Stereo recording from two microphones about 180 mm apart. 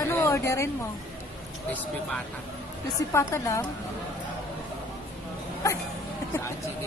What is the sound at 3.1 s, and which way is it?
Speech, 15° left (ahead or behind).